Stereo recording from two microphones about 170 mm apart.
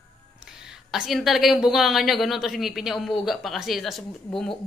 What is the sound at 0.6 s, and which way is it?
Speech, 5° right (ahead or behind).